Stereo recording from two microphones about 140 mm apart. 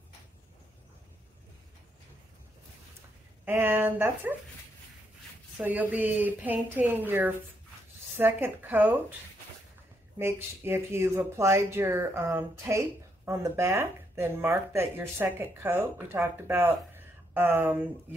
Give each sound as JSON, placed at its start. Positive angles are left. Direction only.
{"t": 3.6, "sound": "a woman's voice", "side_deg": -15}
{"t": 5.6, "sound": "a woman's voice", "side_deg": -10}
{"t": 10.1, "sound": "a woman's voice", "side_deg": -15}